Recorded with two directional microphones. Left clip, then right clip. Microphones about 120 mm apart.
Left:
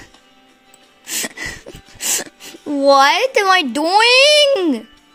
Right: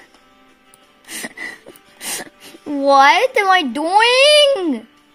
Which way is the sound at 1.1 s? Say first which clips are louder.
Left 3 dB; 15° left (ahead or behind).